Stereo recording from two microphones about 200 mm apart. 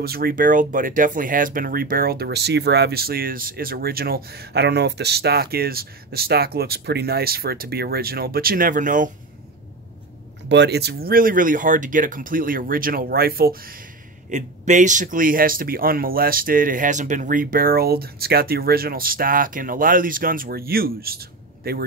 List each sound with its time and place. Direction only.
0.0 s speech: 50° right (ahead or behind)
10.5 s speech: 55° right (ahead or behind)